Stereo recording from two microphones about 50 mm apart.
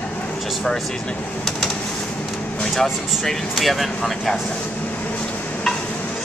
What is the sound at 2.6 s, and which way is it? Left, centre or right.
Speech, centre.